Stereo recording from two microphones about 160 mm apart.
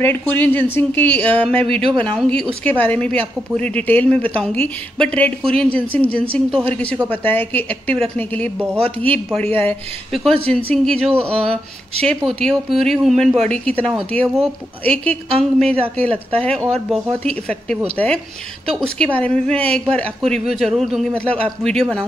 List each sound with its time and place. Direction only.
0.0 s a woman's voice: 10° left (ahead or behind)
11.2 s speech: 35° right (ahead or behind)
12.0 s a woman's voice: 5° left (ahead or behind)
15.2 s speech: 35° right (ahead or behind)
16.0 s a woman's voice: 10° left (ahead or behind)